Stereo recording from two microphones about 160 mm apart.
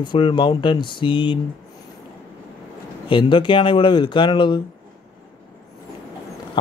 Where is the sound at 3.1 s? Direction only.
30° left (ahead or behind).